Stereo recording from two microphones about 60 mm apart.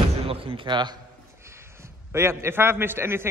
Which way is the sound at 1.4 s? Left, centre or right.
Right.